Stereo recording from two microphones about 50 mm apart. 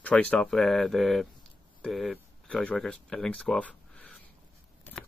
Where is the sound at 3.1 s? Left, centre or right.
Centre.